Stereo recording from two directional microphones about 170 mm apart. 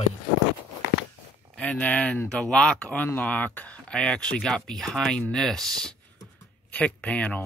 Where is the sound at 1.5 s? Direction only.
5° left (ahead or behind).